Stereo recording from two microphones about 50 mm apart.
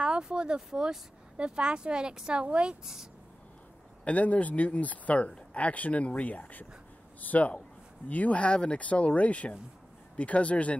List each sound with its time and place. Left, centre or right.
0.0 s speech: centre
4.0 s speech: left